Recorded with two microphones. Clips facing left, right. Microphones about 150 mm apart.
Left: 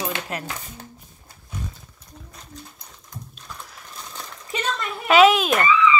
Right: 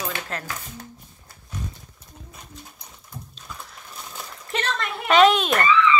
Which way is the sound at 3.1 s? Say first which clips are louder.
Even; 5° right (ahead or behind).